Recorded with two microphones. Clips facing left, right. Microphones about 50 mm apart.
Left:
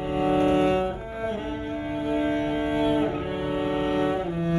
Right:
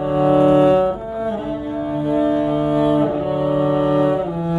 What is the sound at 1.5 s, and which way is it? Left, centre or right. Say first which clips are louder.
Cello: right 7 dB; left.